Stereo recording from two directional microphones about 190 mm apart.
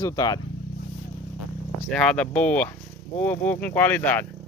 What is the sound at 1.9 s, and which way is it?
Speech, 5° left (ahead or behind).